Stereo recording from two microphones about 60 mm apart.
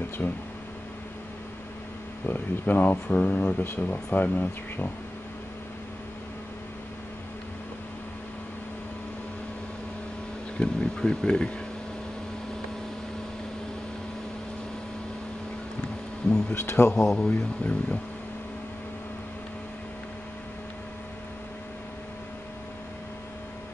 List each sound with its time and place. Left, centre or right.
0.2 s speech: left
2.2 s speech: left
10.6 s speech: centre
16.3 s speech: centre
16.5 s a man's voice: left
17.0 s speech: centre
17.3 s speech: left